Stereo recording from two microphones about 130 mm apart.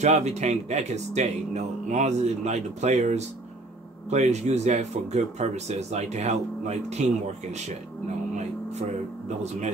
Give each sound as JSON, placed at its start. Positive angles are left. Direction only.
{"t": 0.0, "sound": "speech", "side_deg": -60}
{"t": 8.4, "sound": "vehicle", "side_deg": -60}